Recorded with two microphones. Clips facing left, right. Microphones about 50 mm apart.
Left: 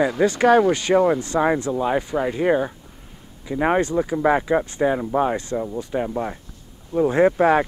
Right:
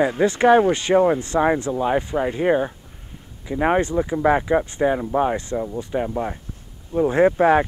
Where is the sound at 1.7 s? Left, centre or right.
Centre.